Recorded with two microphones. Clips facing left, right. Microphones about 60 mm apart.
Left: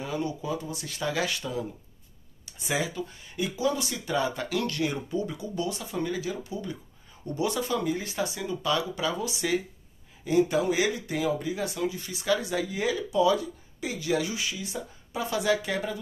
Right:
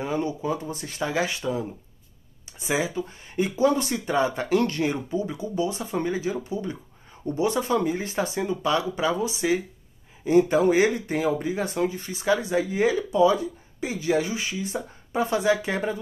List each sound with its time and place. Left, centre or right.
0.0 s speech: right